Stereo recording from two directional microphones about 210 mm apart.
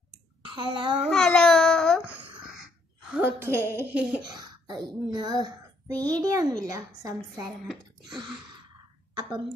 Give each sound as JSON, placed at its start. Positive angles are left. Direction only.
{"t": 0.4, "sound": "speech", "side_deg": -20}
{"t": 1.0, "sound": "babbling", "side_deg": 5}
{"t": 2.1, "sound": "a sound", "side_deg": -5}
{"t": 3.3, "sound": "a child's voice", "side_deg": -10}
{"t": 4.2, "sound": "a child's voice", "side_deg": -20}